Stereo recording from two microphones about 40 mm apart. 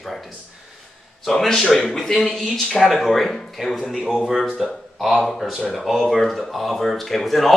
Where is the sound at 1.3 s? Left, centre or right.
Centre.